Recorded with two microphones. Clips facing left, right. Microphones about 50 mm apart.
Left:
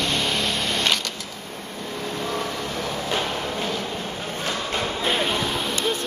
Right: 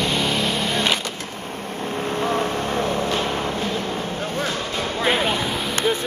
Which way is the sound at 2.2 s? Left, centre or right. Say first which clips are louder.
Right 6 dB; right.